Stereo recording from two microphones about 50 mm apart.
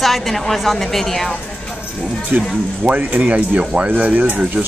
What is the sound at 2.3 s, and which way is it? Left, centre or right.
Speech, right.